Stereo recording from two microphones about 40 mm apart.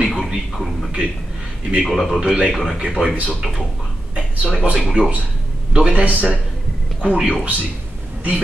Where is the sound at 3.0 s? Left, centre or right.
Centre.